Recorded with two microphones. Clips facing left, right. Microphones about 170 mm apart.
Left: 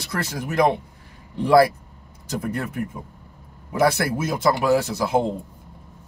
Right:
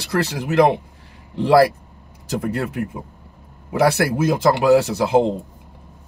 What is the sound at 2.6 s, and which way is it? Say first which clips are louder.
A man's voice: right 4 dB; 70° right (ahead or behind).